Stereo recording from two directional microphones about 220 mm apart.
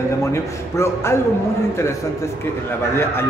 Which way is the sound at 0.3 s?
10° left (ahead or behind).